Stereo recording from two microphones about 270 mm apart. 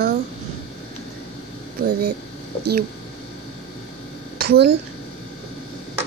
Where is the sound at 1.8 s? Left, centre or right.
Right.